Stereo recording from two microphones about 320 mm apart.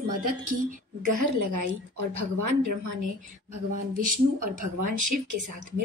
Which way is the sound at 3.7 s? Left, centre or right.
Right.